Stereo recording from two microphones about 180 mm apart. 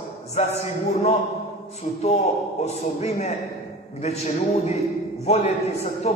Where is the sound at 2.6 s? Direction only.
35° left (ahead or behind).